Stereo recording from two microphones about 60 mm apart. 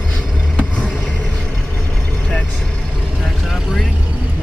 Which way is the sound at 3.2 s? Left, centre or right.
Centre.